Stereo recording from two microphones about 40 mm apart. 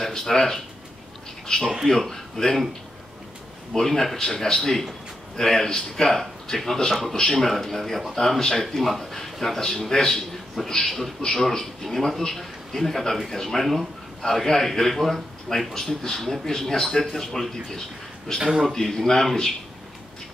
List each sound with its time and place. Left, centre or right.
0.0 s speech: centre
1.9 s speech: centre
3.7 s a man's voice: centre
7.0 s a man's voice: centre
18.4 s a man's voice: centre
18.7 s a man's voice: centre